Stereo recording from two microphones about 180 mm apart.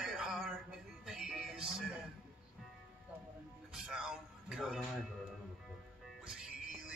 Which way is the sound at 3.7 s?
5° right (ahead or behind).